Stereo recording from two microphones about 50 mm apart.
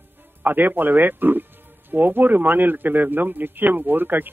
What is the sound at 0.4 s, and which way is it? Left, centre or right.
A man's voice, right.